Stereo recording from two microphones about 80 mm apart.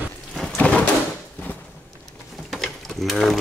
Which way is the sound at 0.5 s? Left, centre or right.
Centre.